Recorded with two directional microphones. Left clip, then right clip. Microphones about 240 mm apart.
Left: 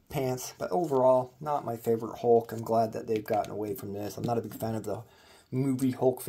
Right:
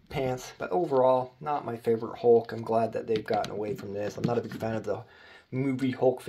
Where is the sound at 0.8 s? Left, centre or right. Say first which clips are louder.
Right 2 dB; left.